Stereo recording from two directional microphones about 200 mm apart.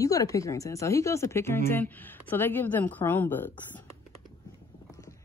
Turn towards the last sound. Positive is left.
turn(degrees=15)  # may be behind; listen again after turning